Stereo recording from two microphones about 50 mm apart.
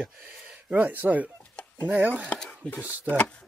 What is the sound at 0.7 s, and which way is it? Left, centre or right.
Speech, right.